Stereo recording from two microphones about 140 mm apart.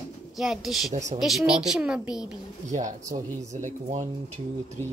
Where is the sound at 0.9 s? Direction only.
60° right (ahead or behind).